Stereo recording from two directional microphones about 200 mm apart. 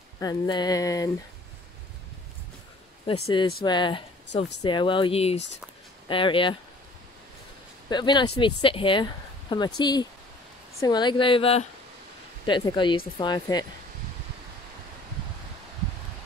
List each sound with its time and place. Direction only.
0.2 s speech: 20° left (ahead or behind)
3.1 s speech: 25° left (ahead or behind)
7.9 s speech: 20° left (ahead or behind)